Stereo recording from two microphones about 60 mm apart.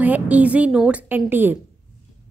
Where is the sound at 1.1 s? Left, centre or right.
Right.